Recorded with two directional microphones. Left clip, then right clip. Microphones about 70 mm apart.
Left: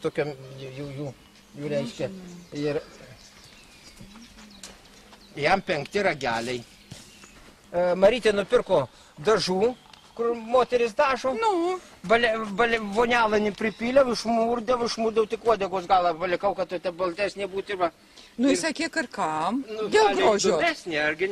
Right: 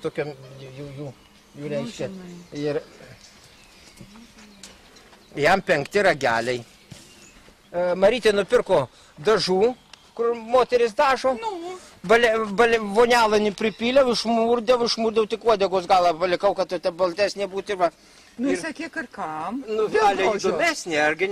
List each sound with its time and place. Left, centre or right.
0.0 s speech: centre
5.3 s speech: right
7.7 s speech: centre
8.1 s speech: centre
9.2 s speech: centre
11.3 s speech: left
12.1 s speech: right
13.6 s speech: right
18.4 s speech: left
20.4 s speech: right